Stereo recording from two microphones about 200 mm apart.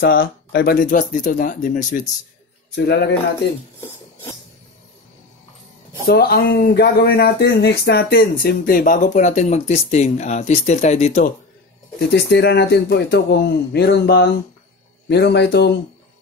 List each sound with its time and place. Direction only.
0.0 s speech: 50° left (ahead or behind)
2.7 s speech: 55° left (ahead or behind)
6.0 s speech: 50° left (ahead or behind)
12.1 s speech: 55° left (ahead or behind)